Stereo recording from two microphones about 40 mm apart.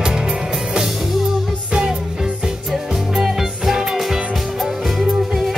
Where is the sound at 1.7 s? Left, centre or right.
Centre.